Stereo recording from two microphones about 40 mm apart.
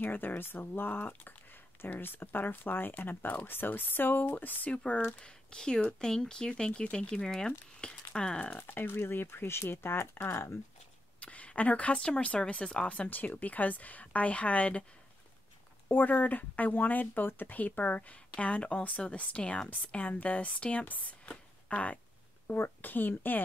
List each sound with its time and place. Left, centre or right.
0.0 s speech: left
3.3 s speech: left
3.5 s speech: left
5.2 s speech: left
8.5 s speech: left
11.1 s a sound: left
12.0 s speech: left
13.1 s speech: left
15.9 s speech: left
21.1 s a sound: left
22.5 s speech: left